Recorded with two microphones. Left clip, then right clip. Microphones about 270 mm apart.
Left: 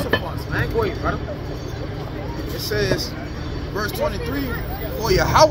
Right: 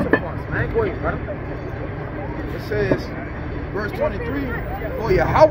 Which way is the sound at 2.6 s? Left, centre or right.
Centre.